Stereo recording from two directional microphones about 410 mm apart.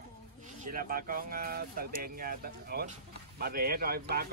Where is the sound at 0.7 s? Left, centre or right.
Right.